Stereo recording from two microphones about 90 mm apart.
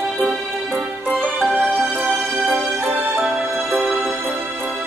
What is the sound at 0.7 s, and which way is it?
Music, 20° right (ahead or behind).